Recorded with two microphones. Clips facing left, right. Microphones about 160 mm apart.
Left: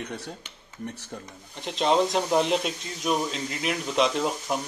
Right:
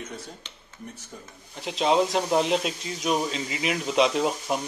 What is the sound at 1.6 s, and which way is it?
Speech, centre (ahead or behind).